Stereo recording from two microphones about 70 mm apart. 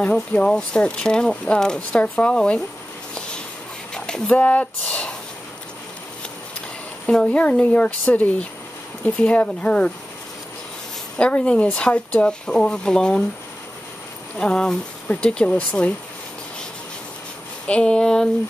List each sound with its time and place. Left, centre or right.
0.0 s speech: centre
3.2 s a sound: centre
7.1 s speech: centre
11.1 s speech: centre
14.4 s speech: centre
17.6 s speech: centre